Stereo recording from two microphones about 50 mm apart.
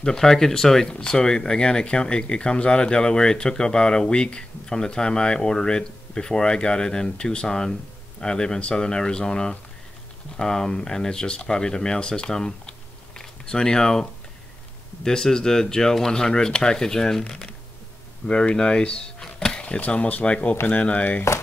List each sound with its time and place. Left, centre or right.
0.0 s speech: centre
15.0 s speech: centre; by 21.2 s left